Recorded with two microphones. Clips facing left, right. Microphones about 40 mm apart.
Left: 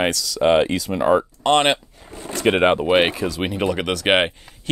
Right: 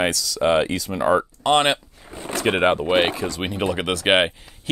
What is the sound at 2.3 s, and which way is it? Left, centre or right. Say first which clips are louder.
Music: left 2 dB; centre.